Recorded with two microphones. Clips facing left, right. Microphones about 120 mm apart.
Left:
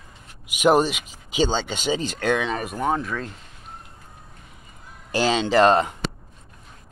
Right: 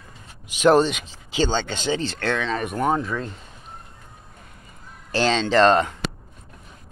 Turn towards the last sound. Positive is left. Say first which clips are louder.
# even
turn(degrees=10)  # may be behind; listen again after turning